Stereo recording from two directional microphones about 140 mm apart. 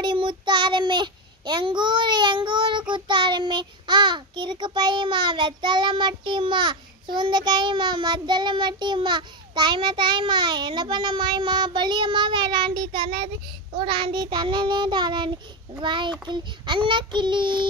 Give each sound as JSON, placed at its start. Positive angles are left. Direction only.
{"t": 0.0, "sound": "child singing", "side_deg": -35}
{"t": 2.9, "sound": "a child's voice", "side_deg": -35}